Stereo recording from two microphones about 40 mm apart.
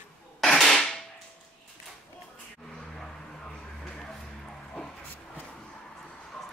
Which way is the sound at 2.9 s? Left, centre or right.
Centre.